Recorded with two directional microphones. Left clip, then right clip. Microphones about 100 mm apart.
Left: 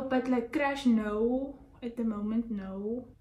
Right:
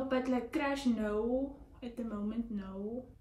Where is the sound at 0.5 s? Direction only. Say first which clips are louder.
Left 7 dB; 45° left (ahead or behind).